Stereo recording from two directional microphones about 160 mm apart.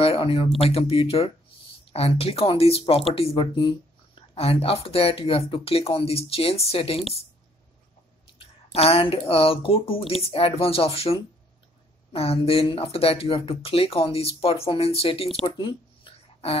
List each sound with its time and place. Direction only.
0.0 s speech: 35° left (ahead or behind)
8.4 s speech: 35° left (ahead or behind)
15.4 s a sound: 30° left (ahead or behind)